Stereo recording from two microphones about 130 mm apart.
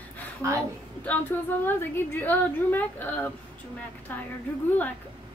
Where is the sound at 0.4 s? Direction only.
25° right (ahead or behind).